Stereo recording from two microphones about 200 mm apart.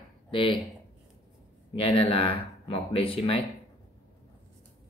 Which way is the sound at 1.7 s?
25° left (ahead or behind).